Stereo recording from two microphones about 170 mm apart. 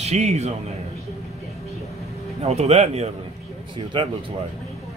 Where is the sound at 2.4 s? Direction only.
40° right (ahead or behind).